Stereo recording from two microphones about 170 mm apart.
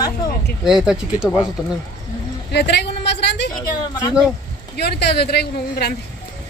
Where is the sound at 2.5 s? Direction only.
80° left.